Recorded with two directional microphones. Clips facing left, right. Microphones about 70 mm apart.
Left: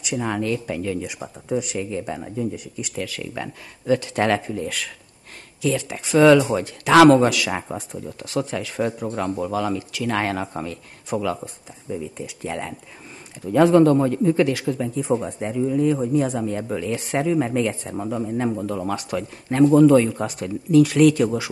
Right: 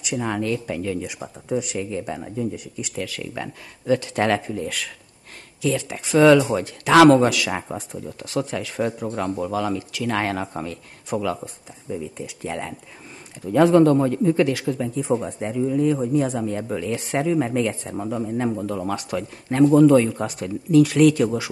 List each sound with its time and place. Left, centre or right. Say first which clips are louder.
0.2 s speech: even; left